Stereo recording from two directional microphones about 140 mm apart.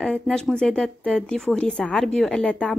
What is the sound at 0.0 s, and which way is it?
Speech, 5° left (ahead or behind).